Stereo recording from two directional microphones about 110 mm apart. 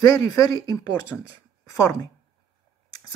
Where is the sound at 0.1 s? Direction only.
35° left (ahead or behind).